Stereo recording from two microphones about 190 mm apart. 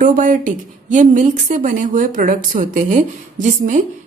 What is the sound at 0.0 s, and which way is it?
A woman's voice, 45° right (ahead or behind).